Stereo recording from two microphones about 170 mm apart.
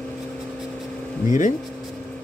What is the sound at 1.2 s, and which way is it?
Speech, 50° left (ahead or behind).